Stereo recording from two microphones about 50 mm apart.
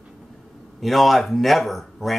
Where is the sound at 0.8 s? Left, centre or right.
Centre.